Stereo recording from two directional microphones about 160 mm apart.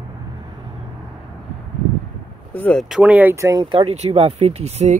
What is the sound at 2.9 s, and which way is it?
Speech, 10° right (ahead or behind).